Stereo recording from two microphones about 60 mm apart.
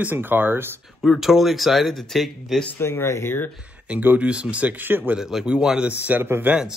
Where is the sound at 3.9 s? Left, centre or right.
Right.